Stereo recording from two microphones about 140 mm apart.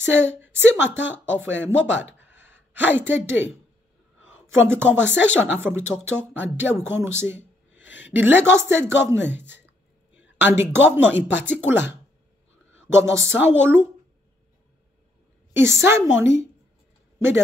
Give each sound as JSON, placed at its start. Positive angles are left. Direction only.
{"t": 0.3, "sound": "speech", "side_deg": -15}
{"t": 15.6, "sound": "a woman's voice", "side_deg": -20}